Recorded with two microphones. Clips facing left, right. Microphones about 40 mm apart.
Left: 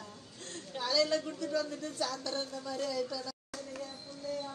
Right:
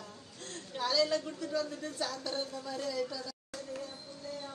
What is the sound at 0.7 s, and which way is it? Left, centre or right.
A woman's voice, centre.